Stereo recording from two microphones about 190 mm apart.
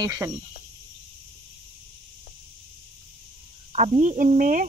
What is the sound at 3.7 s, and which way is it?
Speech, 35° right (ahead or behind).